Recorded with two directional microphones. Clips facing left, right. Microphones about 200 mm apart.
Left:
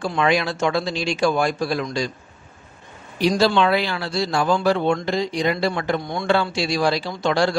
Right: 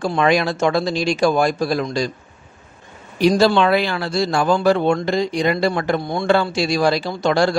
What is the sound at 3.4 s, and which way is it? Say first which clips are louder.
A man's voice: right 3 dB; 50° right (ahead or behind).